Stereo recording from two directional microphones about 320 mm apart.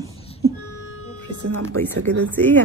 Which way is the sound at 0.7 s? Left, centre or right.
Left.